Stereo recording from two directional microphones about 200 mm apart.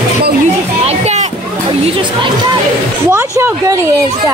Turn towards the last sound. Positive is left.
turn(degrees=-15)  # may be behind; listen again after turning